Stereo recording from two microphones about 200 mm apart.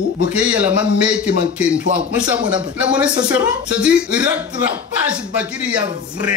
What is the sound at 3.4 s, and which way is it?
Speech, 5° right (ahead or behind).